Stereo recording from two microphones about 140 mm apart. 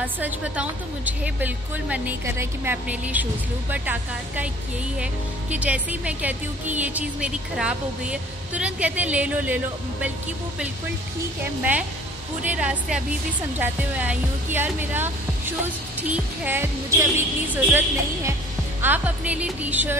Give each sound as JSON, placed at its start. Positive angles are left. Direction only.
{"t": 0.0, "sound": "speech", "side_deg": -10}
{"t": 12.4, "sound": "speech", "side_deg": -5}